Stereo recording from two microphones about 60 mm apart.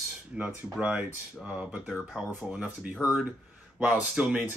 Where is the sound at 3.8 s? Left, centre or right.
Right.